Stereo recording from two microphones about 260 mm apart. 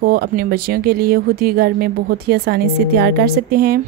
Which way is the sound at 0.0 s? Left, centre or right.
Right.